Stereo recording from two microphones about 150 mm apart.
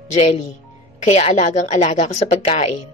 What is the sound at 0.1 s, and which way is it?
A woman's voice, 50° left (ahead or behind).